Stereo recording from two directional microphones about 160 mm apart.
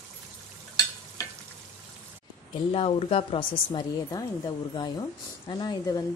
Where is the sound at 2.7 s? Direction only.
35° left (ahead or behind).